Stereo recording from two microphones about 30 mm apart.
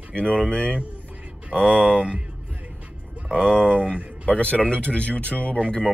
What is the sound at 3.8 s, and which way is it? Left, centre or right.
Speech, left.